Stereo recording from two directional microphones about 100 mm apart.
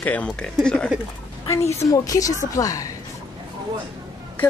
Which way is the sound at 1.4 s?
30° left (ahead or behind).